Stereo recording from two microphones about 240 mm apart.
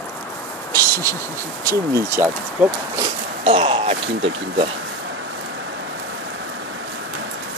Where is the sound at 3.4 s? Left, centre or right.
Right.